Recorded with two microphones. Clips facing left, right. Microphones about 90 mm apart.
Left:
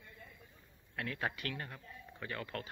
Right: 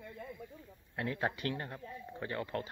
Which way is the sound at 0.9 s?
25° right (ahead or behind).